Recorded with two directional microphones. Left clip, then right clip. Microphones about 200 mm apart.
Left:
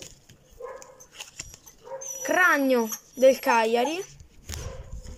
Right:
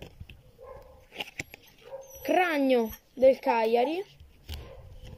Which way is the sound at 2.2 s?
5° right (ahead or behind).